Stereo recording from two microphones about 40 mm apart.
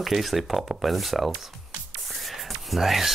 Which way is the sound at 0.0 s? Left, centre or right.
Centre.